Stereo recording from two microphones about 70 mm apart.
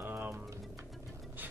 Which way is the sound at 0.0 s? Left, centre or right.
Right.